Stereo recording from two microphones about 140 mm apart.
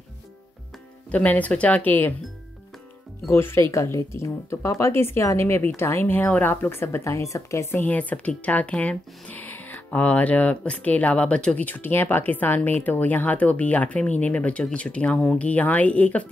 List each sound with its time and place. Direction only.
1.1 s speech: 10° left (ahead or behind)
3.3 s speech: 15° left (ahead or behind)